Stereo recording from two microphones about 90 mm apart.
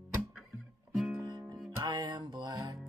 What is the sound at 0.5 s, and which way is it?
Music, centre (ahead or behind).